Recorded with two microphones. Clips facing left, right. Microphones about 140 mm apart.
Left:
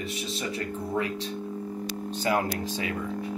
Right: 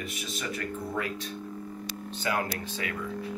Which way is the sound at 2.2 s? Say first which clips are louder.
Left 4 dB; 30° left (ahead or behind).